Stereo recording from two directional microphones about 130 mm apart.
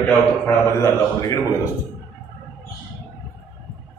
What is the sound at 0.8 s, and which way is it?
Speech, 30° left (ahead or behind).